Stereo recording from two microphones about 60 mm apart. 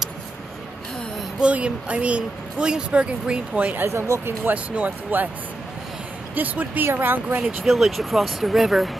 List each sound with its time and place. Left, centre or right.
1.4 s speech: centre
6.3 s speech: right
7.6 s speech: centre